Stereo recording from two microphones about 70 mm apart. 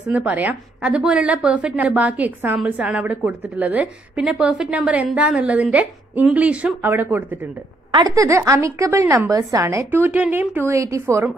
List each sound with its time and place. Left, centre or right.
0.0 s a woman's voice: right
3.8 s a woman's voice: centre
8.1 s a woman's voice: right
9.8 s a woman's voice: right
10.2 s a woman's voice: centre
10.5 s a woman's voice: right